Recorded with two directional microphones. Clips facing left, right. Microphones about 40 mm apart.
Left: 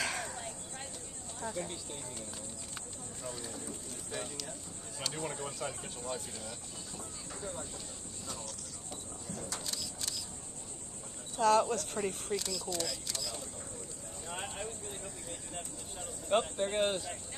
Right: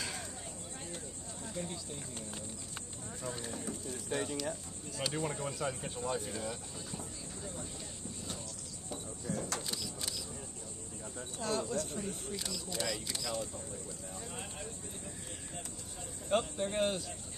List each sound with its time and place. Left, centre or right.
0.0 s a sound: left
1.6 s speech: left
3.3 s speech: right
3.6 s speech: right
5.0 s speech: centre
9.3 s vehicle: right
9.7 s single-lens reflex camera: centre
11.3 s speech: left
12.4 s speech: centre
14.3 s a sound: left
16.3 s speech: centre